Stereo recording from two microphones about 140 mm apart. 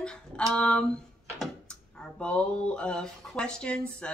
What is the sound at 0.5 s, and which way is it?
Speech, 5° left (ahead or behind).